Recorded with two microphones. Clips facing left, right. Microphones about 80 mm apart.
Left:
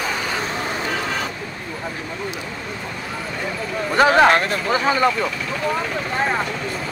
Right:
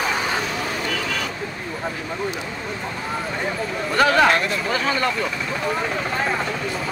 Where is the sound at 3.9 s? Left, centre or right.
Left.